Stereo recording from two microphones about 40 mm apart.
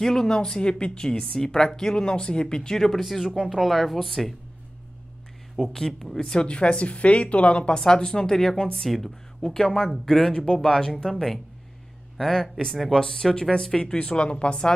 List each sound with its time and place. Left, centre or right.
0.0 s a woman's voice: centre
5.7 s a woman's voice: centre
13.9 s speech: left